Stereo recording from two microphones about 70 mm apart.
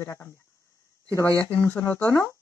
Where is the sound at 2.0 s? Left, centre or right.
Left.